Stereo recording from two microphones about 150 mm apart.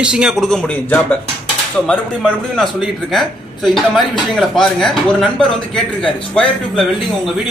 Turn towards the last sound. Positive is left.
turn(degrees=5)  # may be behind; listen again after turning